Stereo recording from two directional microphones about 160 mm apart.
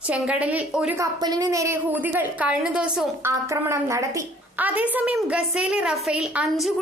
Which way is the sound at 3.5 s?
20° right (ahead or behind).